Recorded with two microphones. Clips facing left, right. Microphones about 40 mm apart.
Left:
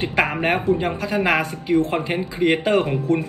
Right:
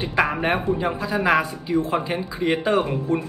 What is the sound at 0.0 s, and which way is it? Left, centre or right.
Speech, left.